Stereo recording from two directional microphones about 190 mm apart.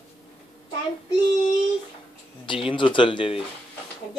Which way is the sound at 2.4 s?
25° left (ahead or behind).